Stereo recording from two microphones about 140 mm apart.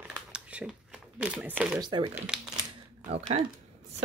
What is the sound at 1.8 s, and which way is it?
Speech, 35° right (ahead or behind).